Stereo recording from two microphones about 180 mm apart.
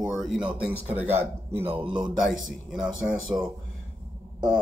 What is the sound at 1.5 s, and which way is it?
Speech, 30° right (ahead or behind).